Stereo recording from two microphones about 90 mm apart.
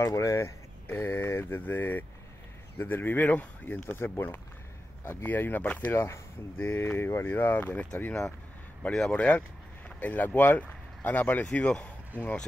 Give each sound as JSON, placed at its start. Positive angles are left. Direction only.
{"t": 0.0, "sound": "speech", "side_deg": 35}